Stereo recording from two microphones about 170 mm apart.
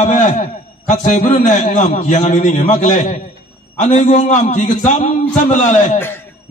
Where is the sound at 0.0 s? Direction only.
45° left (ahead or behind).